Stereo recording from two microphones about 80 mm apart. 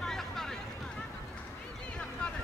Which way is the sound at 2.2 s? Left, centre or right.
Centre.